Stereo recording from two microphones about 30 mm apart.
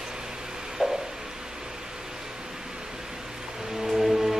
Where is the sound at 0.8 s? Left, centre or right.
Centre.